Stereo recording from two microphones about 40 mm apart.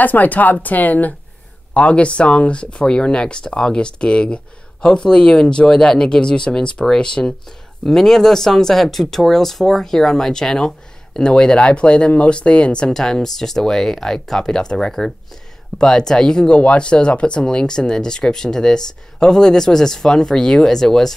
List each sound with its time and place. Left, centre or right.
0.0 s speech: left
1.7 s speech: left
7.8 s speech: centre